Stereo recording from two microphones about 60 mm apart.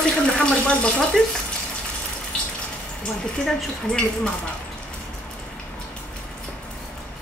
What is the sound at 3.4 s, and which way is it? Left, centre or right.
Speech, centre.